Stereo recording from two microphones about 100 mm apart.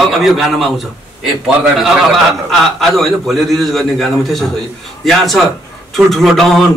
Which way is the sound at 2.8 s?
Centre (ahead or behind).